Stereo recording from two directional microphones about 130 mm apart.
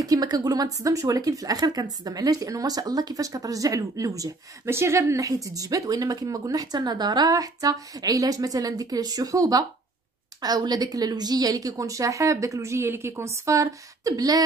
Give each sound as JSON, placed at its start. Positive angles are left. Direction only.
{"t": 0.0, "sound": "speech", "side_deg": -30}